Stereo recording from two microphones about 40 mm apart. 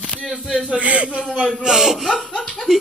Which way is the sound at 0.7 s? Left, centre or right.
Right.